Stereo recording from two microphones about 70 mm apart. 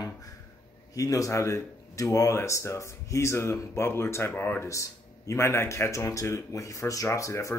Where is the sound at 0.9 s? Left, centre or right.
Left.